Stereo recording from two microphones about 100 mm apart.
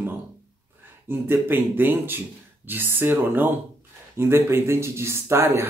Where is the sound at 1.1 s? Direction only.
20° right (ahead or behind).